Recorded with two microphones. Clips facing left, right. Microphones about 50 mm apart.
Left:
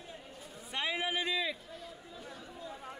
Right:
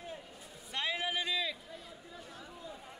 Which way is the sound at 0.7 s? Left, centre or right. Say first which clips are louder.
Left 1 dB; centre.